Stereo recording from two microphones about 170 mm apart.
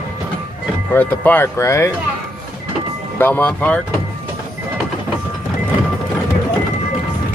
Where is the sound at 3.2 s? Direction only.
10° left (ahead or behind).